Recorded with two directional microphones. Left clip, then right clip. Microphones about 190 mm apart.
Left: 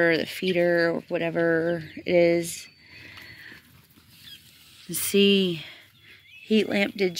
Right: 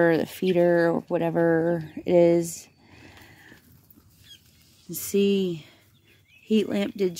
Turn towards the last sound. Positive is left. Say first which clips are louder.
# left 2 dB
turn(degrees=-25)  # may be behind; listen again after turning